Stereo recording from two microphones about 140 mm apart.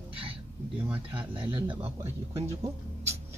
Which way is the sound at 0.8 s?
10° right (ahead or behind).